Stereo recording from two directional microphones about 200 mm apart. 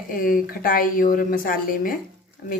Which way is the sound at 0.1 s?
45° left (ahead or behind).